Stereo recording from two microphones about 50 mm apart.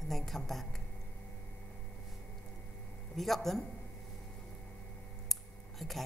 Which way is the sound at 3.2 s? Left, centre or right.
Centre.